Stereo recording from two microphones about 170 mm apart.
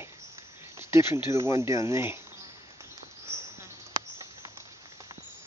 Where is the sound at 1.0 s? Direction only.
25° left (ahead or behind).